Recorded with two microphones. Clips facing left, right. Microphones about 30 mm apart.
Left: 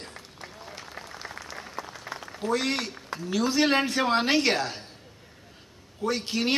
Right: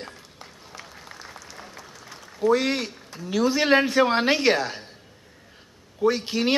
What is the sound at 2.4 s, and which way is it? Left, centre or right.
A man's voice, centre.